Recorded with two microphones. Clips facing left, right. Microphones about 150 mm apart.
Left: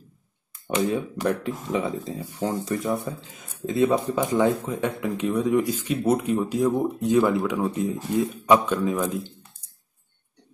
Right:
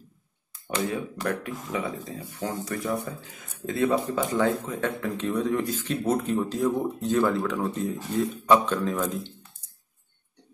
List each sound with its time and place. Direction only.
0.7 s speech: 20° left (ahead or behind)